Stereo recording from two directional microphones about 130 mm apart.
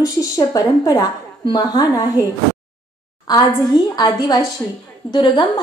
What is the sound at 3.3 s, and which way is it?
A woman's voice, 30° left (ahead or behind).